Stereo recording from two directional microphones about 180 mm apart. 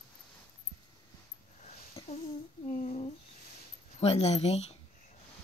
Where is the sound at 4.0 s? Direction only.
35° left (ahead or behind).